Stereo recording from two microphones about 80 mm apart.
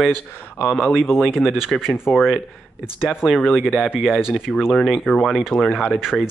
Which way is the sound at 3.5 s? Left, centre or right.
Centre.